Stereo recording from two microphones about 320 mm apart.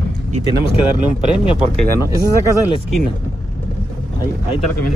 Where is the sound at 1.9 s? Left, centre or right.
Centre.